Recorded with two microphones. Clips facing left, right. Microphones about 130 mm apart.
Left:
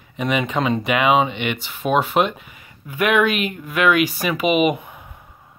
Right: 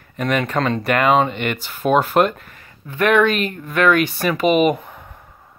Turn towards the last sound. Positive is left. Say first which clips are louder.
# right 2 dB
turn(degrees=5)  # may be behind; listen again after turning